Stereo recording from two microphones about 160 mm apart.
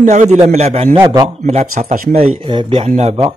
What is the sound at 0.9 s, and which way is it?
Speech, 20° right (ahead or behind).